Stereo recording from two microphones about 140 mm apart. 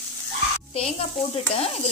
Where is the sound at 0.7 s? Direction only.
45° left (ahead or behind).